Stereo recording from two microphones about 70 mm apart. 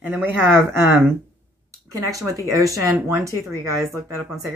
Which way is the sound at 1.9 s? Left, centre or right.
Right.